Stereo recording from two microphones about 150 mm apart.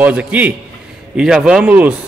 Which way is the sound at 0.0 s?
10° right (ahead or behind).